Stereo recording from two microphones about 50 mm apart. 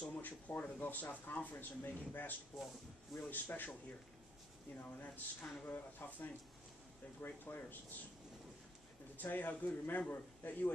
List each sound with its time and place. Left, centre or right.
0.1 s speech: left
4.7 s speech: left
9.1 s speech: left